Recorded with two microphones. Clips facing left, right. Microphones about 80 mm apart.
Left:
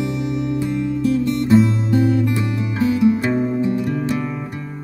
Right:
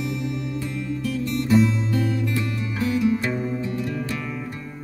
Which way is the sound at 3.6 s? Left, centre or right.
Centre.